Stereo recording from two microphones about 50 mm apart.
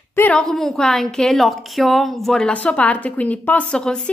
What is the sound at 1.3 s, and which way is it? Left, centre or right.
Speech, centre.